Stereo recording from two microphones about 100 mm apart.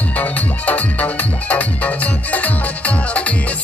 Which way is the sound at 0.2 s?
15° left (ahead or behind).